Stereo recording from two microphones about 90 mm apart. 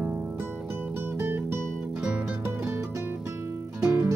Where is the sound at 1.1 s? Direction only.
25° right (ahead or behind).